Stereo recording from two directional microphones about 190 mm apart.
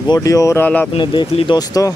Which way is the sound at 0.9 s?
25° left (ahead or behind).